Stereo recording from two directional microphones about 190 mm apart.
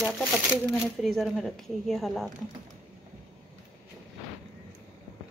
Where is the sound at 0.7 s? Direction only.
Centre (ahead or behind).